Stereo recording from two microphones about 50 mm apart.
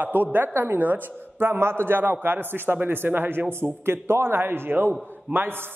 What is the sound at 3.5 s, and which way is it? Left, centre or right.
Speech, right.